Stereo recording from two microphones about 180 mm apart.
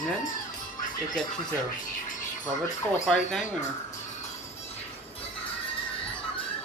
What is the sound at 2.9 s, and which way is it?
Speech, 5° left (ahead or behind).